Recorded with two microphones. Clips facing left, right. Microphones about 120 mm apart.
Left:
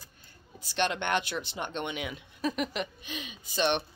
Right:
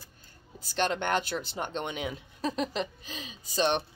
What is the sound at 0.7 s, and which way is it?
A woman's voice, 40° right (ahead or behind).